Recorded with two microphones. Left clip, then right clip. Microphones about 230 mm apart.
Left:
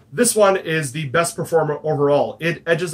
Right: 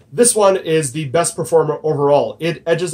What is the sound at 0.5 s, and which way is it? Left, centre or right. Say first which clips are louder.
Speech: right 4 dB; centre.